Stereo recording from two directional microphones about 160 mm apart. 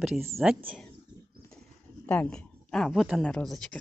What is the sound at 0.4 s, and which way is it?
Speech, 5° right (ahead or behind).